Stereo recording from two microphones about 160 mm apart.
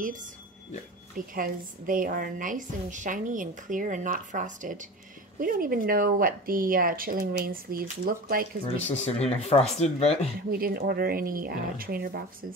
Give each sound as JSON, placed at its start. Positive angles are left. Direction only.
{"t": 0.0, "sound": "a woman's voice", "side_deg": -55}
{"t": 5.4, "sound": "a woman's voice", "side_deg": -65}
{"t": 8.8, "sound": "speech", "side_deg": 40}
{"t": 10.5, "sound": "speech", "side_deg": -70}